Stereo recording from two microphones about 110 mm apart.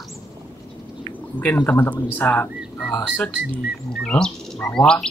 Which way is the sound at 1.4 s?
15° left (ahead or behind).